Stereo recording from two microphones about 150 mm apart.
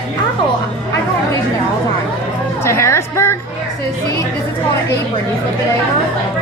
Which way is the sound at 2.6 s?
15° left (ahead or behind).